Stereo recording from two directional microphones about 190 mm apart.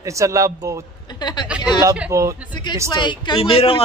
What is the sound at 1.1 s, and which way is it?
Speech, 20° left (ahead or behind).